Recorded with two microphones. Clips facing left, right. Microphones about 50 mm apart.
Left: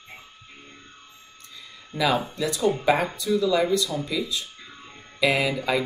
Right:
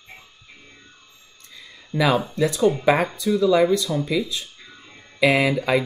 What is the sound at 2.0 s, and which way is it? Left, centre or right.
Speech, right.